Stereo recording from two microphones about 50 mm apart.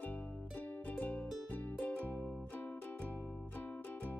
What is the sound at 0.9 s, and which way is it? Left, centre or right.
Music, left.